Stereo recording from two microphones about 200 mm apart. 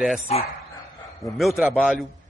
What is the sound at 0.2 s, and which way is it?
Speech, 30° left (ahead or behind).